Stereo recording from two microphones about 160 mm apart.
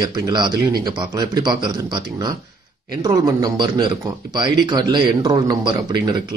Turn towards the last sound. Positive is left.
turn(degrees=-25)  # may be behind; listen again after turning